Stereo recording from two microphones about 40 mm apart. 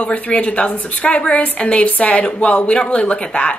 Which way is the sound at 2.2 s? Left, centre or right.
Left.